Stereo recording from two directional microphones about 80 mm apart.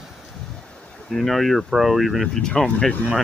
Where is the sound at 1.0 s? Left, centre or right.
Centre.